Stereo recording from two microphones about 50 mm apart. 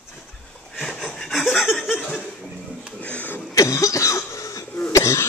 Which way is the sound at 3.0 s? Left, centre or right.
Left.